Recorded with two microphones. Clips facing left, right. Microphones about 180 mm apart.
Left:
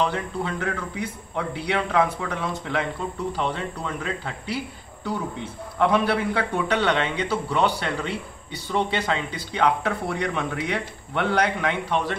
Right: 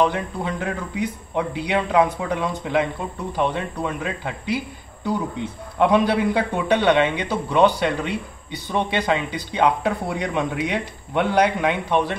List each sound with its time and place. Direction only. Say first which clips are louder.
0.1 s a man's voice: right 1 dB; 15° right (ahead or behind)